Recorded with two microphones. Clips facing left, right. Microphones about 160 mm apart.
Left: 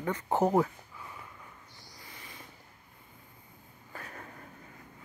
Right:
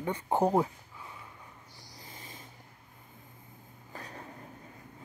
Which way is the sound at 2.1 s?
25° right (ahead or behind).